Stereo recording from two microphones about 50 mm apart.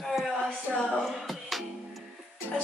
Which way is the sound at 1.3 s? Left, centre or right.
Centre.